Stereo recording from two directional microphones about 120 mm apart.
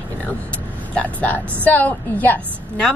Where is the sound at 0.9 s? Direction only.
10° left (ahead or behind).